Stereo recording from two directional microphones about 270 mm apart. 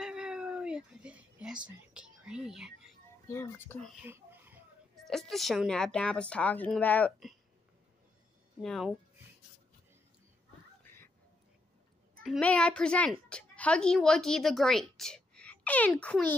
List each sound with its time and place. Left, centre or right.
0.0 s a sound: centre
3.3 s speech: centre
4.0 s speech: centre
8.6 s speech: centre
12.2 s a woman's voice: centre